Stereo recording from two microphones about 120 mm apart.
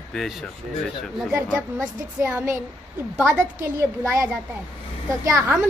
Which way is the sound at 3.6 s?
25° right (ahead or behind).